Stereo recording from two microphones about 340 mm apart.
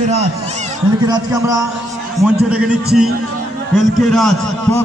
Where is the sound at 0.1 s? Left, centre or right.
Centre.